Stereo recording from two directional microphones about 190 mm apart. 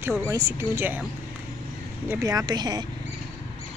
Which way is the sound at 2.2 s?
20° right (ahead or behind).